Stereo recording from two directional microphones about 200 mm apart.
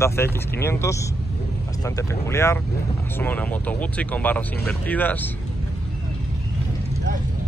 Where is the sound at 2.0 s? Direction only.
15° left (ahead or behind).